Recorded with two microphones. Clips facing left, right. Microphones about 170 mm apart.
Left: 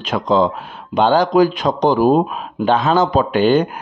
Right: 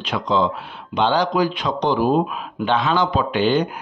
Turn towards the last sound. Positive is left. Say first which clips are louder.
# left 5 dB
turn(degrees=45)  # may be behind; listen again after turning